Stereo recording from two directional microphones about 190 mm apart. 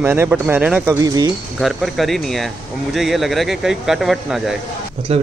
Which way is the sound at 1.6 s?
Centre (ahead or behind).